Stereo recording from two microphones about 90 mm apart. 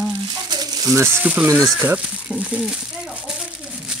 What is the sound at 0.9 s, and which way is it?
Speech, 25° right (ahead or behind).